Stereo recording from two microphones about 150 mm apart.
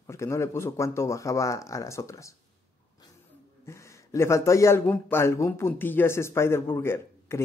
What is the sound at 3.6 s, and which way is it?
A man's voice, 20° left (ahead or behind).